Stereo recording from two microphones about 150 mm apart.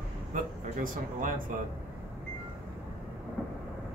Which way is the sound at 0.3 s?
60° right (ahead or behind).